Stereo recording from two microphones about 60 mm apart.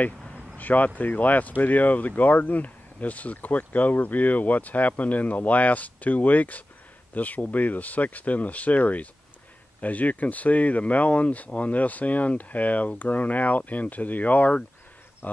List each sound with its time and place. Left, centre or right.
0.6 s speech: left